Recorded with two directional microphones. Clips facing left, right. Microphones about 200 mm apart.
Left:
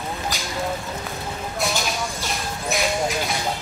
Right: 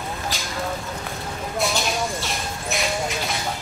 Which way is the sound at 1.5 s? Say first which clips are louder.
Right 2 dB; centre (ahead or behind).